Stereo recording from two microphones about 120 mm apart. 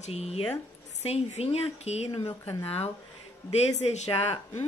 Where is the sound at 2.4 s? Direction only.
20° left (ahead or behind).